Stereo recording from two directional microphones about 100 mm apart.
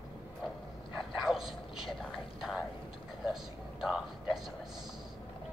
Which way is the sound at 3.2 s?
5° right (ahead or behind).